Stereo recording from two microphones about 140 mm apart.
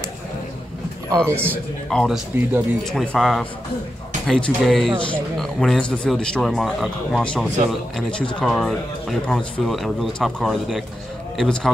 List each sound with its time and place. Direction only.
1.2 s a man's voice: 15° right (ahead or behind)
1.9 s speech: centre (ahead or behind)